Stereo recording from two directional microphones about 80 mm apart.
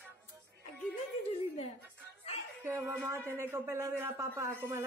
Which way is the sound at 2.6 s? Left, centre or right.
Right.